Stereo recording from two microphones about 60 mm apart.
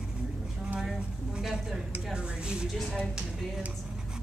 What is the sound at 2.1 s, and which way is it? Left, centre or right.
Speech, centre.